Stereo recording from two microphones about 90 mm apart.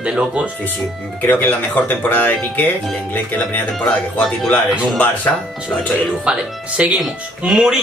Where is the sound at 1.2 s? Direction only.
20° left (ahead or behind).